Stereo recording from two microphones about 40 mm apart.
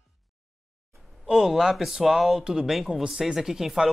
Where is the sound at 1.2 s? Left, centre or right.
Centre.